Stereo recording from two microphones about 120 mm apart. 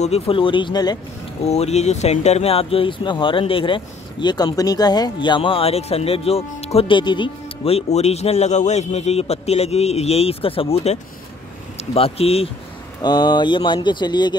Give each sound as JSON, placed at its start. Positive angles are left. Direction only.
{"t": 0.0, "sound": "speech", "side_deg": 55}
{"t": 1.4, "sound": "speech", "side_deg": 65}
{"t": 7.0, "sound": "speech", "side_deg": 40}
{"t": 13.0, "sound": "speech", "side_deg": 35}